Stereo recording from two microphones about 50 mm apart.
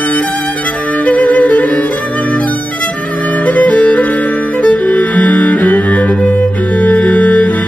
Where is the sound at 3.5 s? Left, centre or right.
Left.